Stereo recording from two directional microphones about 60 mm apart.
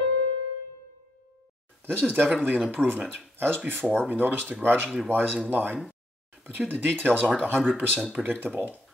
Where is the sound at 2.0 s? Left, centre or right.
Right.